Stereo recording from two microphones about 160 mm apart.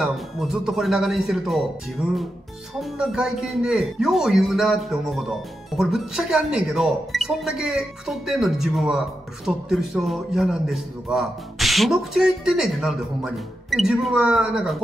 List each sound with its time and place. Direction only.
0.0 s speech: centre (ahead or behind)
2.8 s speech: centre (ahead or behind)